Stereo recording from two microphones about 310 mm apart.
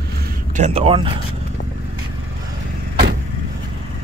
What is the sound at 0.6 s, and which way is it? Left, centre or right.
Speech, centre.